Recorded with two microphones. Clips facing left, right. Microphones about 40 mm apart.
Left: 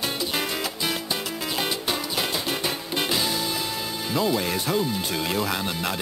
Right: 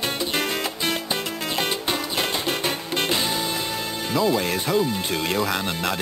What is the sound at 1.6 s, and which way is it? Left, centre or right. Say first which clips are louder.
Music: right 2 dB; centre.